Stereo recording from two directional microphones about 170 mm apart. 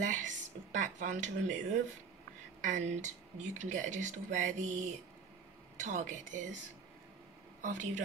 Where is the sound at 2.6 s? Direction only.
45° right (ahead or behind).